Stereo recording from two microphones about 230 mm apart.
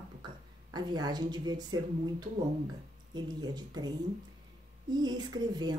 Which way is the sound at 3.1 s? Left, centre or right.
Centre.